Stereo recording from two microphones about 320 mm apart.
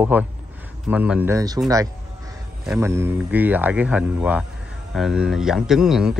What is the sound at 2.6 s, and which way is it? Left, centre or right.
Speech, centre.